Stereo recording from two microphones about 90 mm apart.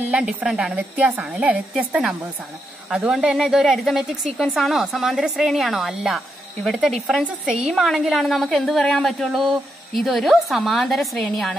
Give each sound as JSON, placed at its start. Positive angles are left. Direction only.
{"t": 0.1, "sound": "a woman's voice", "side_deg": -15}
{"t": 0.7, "sound": "a woman's voice", "side_deg": -20}